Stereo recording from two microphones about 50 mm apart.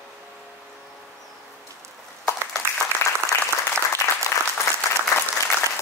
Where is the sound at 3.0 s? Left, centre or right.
Left.